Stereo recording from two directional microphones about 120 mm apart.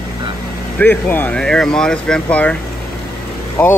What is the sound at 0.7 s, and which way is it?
A man's voice, 15° left (ahead or behind).